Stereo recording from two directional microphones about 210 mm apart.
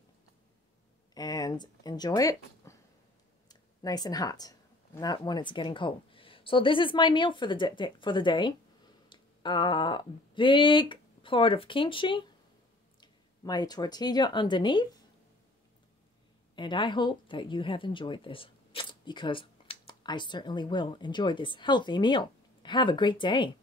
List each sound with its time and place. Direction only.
1.1 s speech: 20° left (ahead or behind)
16.5 s speech: 20° left (ahead or behind)